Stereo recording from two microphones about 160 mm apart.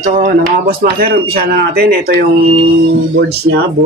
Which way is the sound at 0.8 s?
70° right (ahead or behind).